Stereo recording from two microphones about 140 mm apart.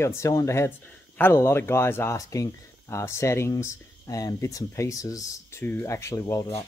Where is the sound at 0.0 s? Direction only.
20° left (ahead or behind).